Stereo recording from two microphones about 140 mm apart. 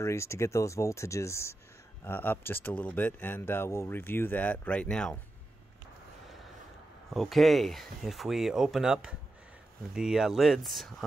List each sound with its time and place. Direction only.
0.0 s speech: 20° left (ahead or behind)
7.2 s speech: centre (ahead or behind)